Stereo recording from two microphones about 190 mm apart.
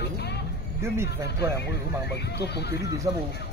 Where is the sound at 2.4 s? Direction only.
60° left (ahead or behind).